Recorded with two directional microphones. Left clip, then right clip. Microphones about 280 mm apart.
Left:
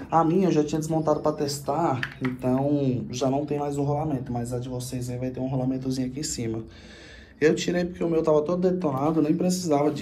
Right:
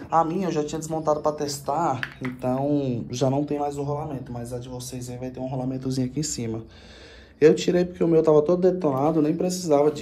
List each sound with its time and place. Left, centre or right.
0.3 s speech: right
1.2 s speech: centre; by 3.7 s right
3.7 s speech: centre
7.3 s speech: centre